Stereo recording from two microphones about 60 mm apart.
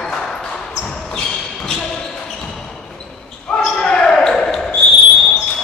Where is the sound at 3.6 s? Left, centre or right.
Centre.